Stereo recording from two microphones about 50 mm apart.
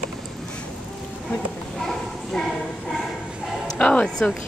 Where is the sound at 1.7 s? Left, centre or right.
Centre.